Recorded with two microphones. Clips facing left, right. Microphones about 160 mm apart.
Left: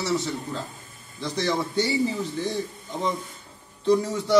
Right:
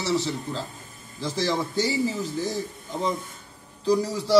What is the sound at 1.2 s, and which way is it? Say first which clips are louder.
A man's voice: even; centre (ahead or behind).